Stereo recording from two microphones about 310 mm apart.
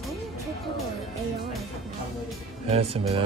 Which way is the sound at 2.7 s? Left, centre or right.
Centre.